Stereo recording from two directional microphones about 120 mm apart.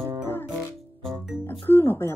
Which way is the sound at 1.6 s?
15° left (ahead or behind).